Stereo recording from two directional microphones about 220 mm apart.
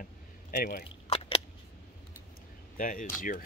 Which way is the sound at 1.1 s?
25° left (ahead or behind).